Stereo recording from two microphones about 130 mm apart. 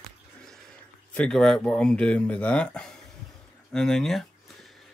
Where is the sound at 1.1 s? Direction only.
5° left (ahead or behind).